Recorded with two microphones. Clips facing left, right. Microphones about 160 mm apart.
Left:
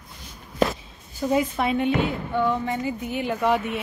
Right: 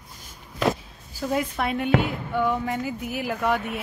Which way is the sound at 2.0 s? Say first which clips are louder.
Left 1 dB; 10° right (ahead or behind).